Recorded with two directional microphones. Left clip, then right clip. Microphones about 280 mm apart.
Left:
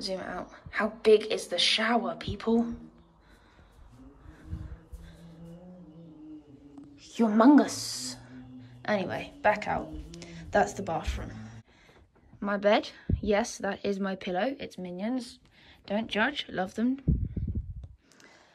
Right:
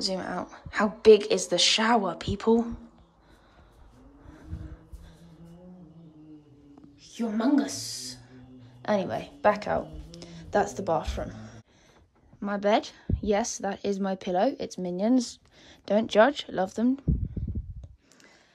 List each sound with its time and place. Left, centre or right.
0.0 s a woman's voice: centre
7.0 s a sound: centre; by 11.6 s right
12.4 s a woman's voice: centre